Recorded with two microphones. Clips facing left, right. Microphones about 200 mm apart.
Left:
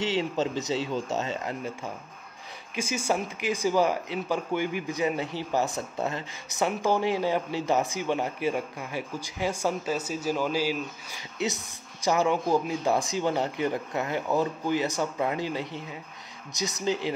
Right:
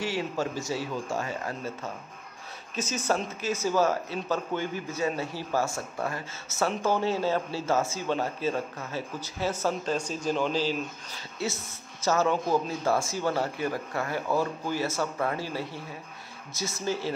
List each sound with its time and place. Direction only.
0.0 s speech: 20° left (ahead or behind)
2.7 s speech: 10° left (ahead or behind)